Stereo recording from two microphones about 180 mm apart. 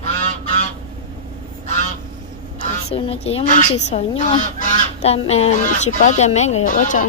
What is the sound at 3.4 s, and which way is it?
Goose, 45° left (ahead or behind).